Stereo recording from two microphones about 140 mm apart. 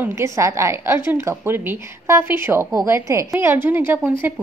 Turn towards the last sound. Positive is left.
turn(degrees=-15)  # may be behind; listen again after turning